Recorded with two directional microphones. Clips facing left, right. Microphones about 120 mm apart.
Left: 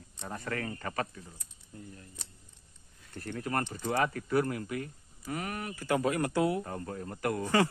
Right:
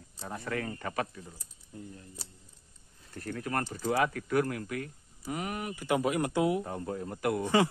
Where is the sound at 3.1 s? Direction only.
Centre (ahead or behind).